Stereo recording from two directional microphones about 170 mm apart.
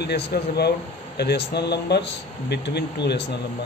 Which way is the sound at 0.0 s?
75° left (ahead or behind).